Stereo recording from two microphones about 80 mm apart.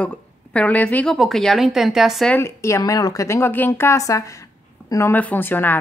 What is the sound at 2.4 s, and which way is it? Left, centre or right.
Speech, left.